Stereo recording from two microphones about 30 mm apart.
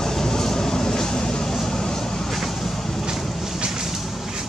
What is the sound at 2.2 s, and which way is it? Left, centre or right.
Vehicle, centre.